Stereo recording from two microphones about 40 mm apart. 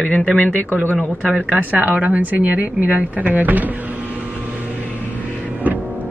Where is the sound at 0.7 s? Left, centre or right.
Right.